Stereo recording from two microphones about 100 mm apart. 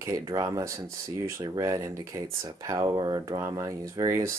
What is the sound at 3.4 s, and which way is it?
Speech, 30° right (ahead or behind).